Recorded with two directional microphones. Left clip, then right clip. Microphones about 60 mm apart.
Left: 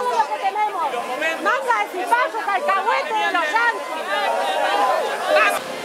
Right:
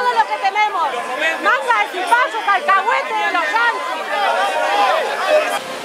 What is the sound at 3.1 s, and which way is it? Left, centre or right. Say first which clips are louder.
Chatter: right 2 dB; centre.